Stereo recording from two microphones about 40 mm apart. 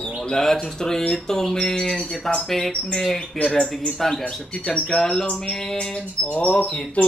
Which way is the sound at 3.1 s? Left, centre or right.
Left.